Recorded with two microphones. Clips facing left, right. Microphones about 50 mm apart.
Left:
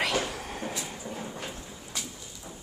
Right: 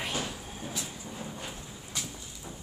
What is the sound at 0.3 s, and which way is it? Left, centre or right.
Vehicle, left.